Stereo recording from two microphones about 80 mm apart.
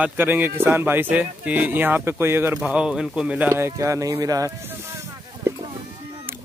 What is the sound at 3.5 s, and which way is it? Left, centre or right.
Speech, right.